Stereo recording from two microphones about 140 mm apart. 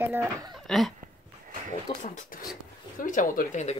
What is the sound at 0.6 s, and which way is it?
Speech, centre (ahead or behind).